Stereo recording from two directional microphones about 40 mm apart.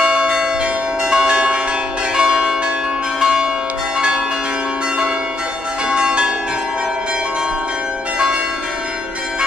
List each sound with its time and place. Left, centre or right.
0.0 s change ringing: right
3.2 s church bell: centre
5.9 s change ringing: right